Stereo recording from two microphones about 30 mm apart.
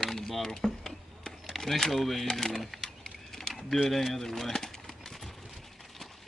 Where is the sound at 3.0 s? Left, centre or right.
Centre.